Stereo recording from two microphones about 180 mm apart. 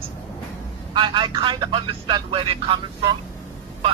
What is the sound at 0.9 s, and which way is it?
Speech, 25° right (ahead or behind).